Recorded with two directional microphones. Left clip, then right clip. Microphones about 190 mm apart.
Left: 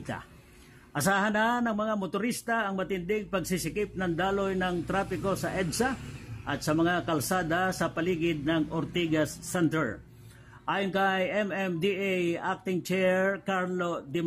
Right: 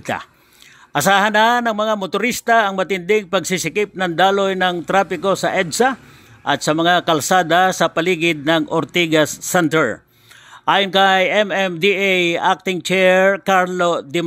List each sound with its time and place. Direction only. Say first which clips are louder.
0.0 s a man's voice: right 15 dB; 40° right (ahead or behind)